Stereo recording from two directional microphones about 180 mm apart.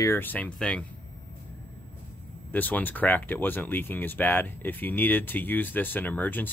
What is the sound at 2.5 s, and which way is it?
Speech, 10° left (ahead or behind).